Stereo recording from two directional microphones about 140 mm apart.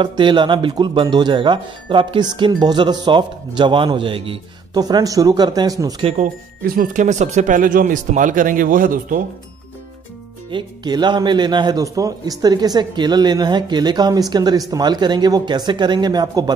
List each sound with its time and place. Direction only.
0.0 s speech: 35° right (ahead or behind)
6.1 s speech: 80° right
10.5 s speech: 30° right (ahead or behind)